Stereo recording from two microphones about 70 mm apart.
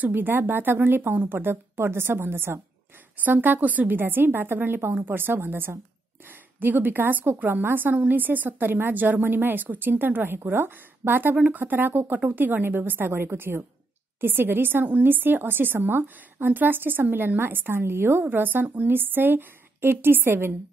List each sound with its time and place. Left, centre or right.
0.0 s a woman's voice: right